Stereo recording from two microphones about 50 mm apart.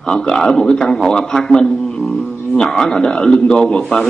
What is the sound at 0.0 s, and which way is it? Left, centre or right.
A man's voice, centre.